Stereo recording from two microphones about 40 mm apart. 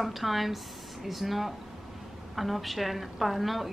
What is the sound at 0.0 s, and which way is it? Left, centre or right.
A woman's voice, centre.